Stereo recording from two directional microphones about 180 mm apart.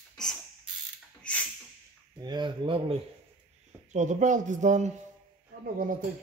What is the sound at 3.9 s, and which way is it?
Speech, 40° right (ahead or behind).